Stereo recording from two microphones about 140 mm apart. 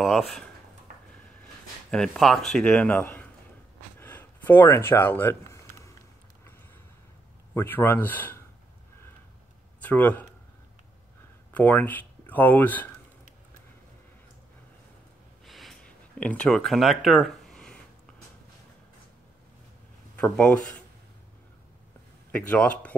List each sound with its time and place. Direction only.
0.0 s speech: centre (ahead or behind)
1.9 s a man's voice: 5° left (ahead or behind)
4.0 s a sound: 15° left (ahead or behind)
7.5 s a man's voice: 15° left (ahead or behind)
9.8 s speech: 10° left (ahead or behind)
11.5 s speech: 10° left (ahead or behind)
15.4 s a sound: centre (ahead or behind)
20.2 s speech: 10° left (ahead or behind)
22.3 s a man's voice: 10° left (ahead or behind)